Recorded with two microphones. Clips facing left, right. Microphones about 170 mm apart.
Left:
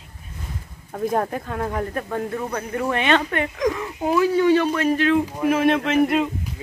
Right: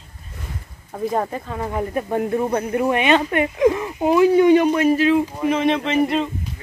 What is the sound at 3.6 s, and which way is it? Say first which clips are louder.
Speech: right 8 dB; 25° right (ahead or behind).